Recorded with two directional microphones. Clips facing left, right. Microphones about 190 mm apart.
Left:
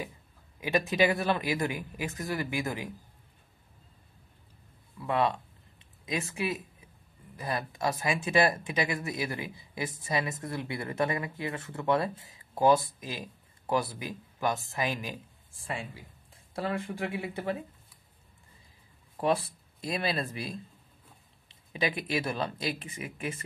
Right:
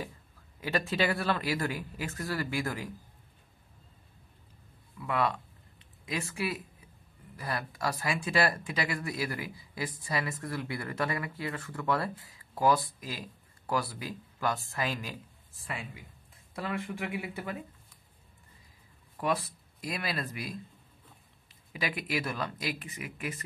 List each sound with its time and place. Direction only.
0.6 s speech: 15° left (ahead or behind)
5.0 s a sound: 25° left (ahead or behind)
7.3 s speech: 20° left (ahead or behind)
15.6 s speech: 30° left (ahead or behind)
19.1 s speech: 30° left (ahead or behind)